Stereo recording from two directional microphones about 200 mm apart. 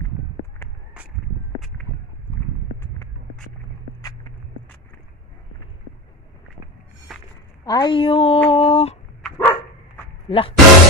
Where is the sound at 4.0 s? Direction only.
20° left (ahead or behind).